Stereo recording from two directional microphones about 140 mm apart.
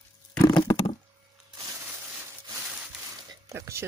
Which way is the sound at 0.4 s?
30° left (ahead or behind).